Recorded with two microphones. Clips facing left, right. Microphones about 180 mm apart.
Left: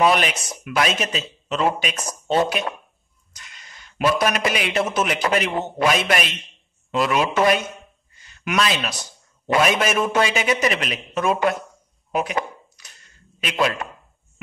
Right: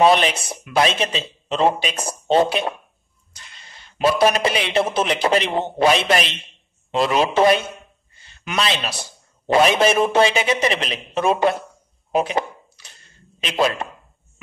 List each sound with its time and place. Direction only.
0.0 s a man's voice: 30° right (ahead or behind)
12.1 s a sound: 30° right (ahead or behind)
13.5 s a man's voice: 30° right (ahead or behind)